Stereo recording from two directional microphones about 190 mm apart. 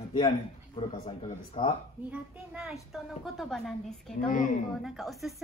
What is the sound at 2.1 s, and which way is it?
A woman's voice, 5° right (ahead or behind).